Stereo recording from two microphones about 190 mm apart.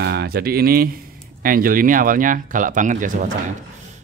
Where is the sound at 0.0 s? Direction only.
60° right (ahead or behind).